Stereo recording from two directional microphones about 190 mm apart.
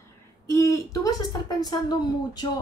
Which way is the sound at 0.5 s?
15° left (ahead or behind).